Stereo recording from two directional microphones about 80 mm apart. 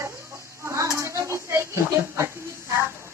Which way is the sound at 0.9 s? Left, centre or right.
Right.